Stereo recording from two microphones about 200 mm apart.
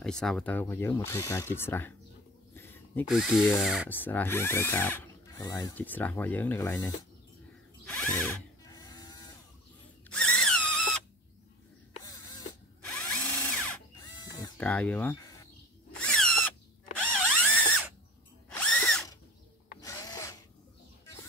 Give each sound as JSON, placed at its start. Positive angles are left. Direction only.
{"t": 0.0, "sound": "speech", "side_deg": 5}
{"t": 2.5, "sound": "a sound", "side_deg": 10}
{"t": 3.1, "sound": "speech", "side_deg": -5}
{"t": 3.9, "sound": "speech", "side_deg": 10}
{"t": 7.8, "sound": "drill", "side_deg": 5}
{"t": 10.0, "sound": "a sound", "side_deg": 5}
{"t": 12.0, "sound": "drill", "side_deg": 20}
{"t": 12.9, "sound": "drill", "side_deg": 5}
{"t": 14.0, "sound": "pig", "side_deg": 20}
{"t": 14.6, "sound": "speech", "side_deg": 5}
{"t": 16.0, "sound": "drill", "side_deg": 5}
{"t": 19.8, "sound": "filing", "side_deg": 15}